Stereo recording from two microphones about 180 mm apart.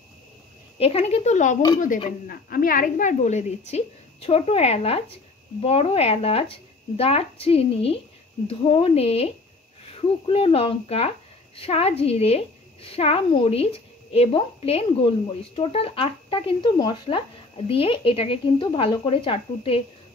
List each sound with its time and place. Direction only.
0.7 s a woman's voice: 30° left (ahead or behind)